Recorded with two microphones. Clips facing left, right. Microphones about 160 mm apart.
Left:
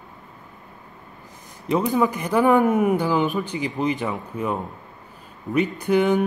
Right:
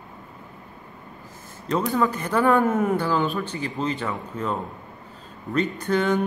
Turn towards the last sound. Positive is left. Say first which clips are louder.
# left 3 dB
turn(degrees=15)  # may be behind; listen again after turning